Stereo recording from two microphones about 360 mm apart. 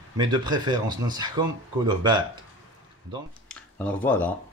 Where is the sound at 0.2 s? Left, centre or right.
Centre.